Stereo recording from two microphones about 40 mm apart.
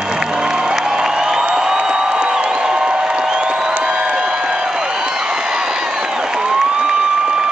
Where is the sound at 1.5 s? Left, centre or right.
Centre.